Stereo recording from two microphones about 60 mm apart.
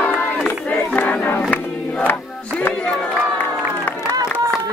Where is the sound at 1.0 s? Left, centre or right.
Left.